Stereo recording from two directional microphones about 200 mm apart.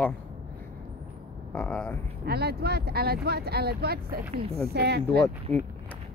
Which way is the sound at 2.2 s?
50° right (ahead or behind).